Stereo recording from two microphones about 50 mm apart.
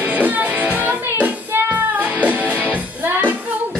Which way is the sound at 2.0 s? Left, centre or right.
Right.